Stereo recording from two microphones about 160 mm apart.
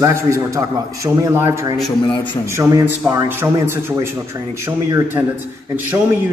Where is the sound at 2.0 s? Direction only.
30° left (ahead or behind).